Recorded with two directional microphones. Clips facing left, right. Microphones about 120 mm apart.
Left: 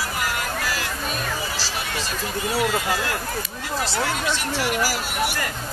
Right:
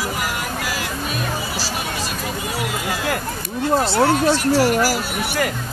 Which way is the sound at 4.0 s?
35° right (ahead or behind).